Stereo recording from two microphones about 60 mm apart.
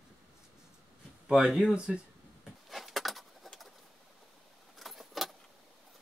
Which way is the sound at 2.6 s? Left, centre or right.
Centre.